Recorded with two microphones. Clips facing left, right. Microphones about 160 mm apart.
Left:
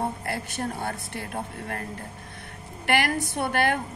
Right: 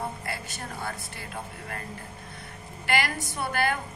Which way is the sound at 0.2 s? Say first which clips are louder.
Left 6 dB; 60° left (ahead or behind).